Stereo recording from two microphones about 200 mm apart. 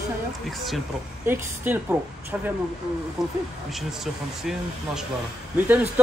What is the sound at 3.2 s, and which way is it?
Speech, centre (ahead or behind).